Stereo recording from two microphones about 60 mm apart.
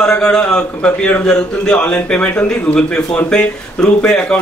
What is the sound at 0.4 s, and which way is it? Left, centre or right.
A man's voice, centre.